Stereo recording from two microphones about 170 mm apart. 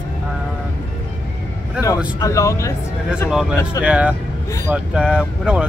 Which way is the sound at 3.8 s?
10° right (ahead or behind).